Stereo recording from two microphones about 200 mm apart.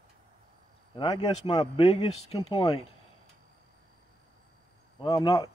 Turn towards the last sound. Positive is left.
turn(degrees=25)  # may be behind; listen again after turning